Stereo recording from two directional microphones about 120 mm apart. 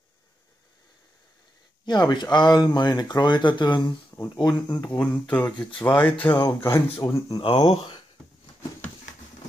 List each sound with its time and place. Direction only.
1.9 s speech: 35° left (ahead or behind)
4.1 s a sound: 15° left (ahead or behind)
4.8 s speech: 15° left (ahead or behind)
5.7 s speech: 40° left (ahead or behind)
5.9 s speech: 15° left (ahead or behind)
7.3 s speech: 45° left (ahead or behind)